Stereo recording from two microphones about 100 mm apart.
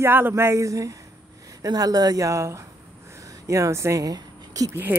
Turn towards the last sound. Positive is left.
turn(degrees=-20)  # may be behind; listen again after turning